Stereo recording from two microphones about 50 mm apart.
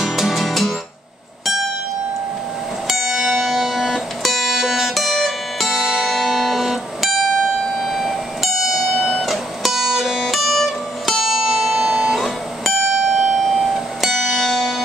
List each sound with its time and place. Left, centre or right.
0.0 s music: centre
2.9 s music: centre
7.7 s a sound: centre
9.1 s music: centre
12.2 s music: centre